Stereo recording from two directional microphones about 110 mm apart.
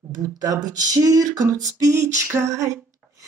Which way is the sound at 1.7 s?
25° right (ahead or behind).